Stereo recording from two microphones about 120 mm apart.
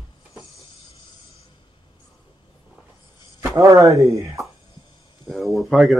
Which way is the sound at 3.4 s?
25° right (ahead or behind).